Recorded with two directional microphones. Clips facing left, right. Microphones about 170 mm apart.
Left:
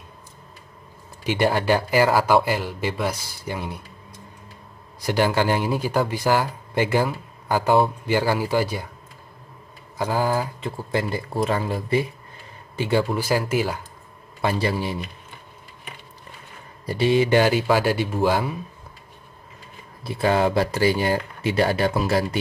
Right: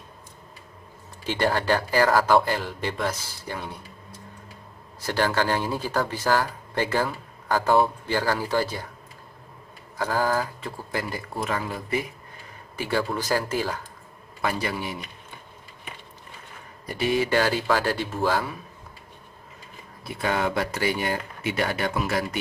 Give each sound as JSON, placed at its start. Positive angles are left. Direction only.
{"t": 1.2, "sound": "speech", "side_deg": 15}
{"t": 5.0, "sound": "speech", "side_deg": 15}
{"t": 9.9, "sound": "speech", "side_deg": 15}
{"t": 13.1, "sound": "speech", "side_deg": 10}
{"t": 14.4, "sound": "speech", "side_deg": 30}
{"t": 16.8, "sound": "speech", "side_deg": 30}
{"t": 20.0, "sound": "speech", "side_deg": 30}